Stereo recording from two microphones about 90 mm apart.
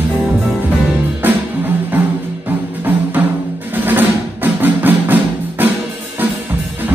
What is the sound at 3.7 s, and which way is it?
Music, 20° right (ahead or behind).